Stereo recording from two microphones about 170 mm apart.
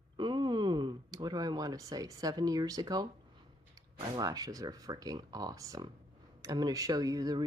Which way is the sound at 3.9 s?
25° right (ahead or behind).